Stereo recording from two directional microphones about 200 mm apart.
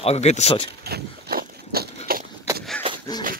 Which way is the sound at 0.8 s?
50° right (ahead or behind).